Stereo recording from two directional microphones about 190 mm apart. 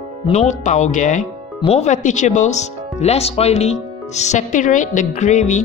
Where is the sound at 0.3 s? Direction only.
35° left (ahead or behind).